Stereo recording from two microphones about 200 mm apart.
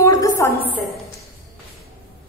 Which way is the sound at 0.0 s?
15° left (ahead or behind).